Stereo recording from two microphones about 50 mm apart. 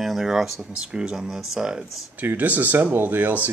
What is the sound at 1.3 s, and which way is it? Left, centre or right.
Speech, centre.